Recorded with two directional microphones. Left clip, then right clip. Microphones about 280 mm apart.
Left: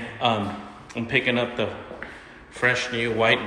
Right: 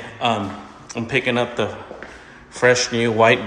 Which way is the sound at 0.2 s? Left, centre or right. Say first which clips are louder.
Right 3 dB; centre.